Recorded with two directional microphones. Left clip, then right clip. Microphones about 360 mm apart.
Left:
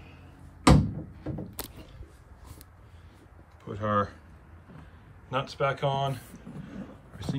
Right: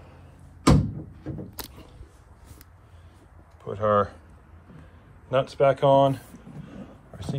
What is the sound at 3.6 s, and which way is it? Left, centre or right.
Speech, centre.